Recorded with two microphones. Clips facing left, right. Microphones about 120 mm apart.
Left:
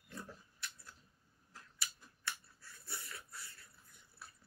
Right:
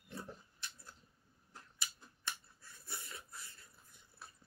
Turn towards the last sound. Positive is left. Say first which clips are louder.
# even
turn(degrees=-20)  # may be behind; listen again after turning